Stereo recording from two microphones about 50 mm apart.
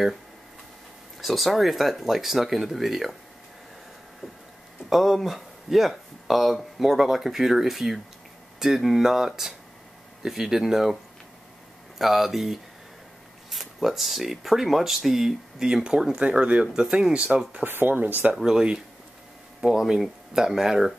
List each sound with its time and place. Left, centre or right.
1.2 s speech: centre
4.8 s speech: centre
12.0 s speech: centre; by 16.6 s right
16.6 s speech: centre
17.6 s speech: right
18.4 s speech: centre
19.9 s speech: centre